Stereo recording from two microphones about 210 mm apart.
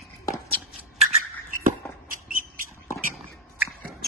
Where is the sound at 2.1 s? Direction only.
40° right (ahead or behind).